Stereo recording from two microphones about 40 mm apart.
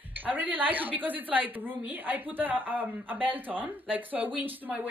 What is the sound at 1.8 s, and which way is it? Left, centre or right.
Speech, right.